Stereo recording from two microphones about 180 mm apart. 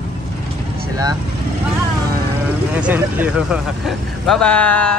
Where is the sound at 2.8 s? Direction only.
10° right (ahead or behind).